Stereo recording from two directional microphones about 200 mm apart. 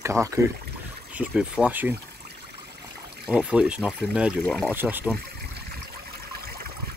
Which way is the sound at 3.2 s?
5° right (ahead or behind).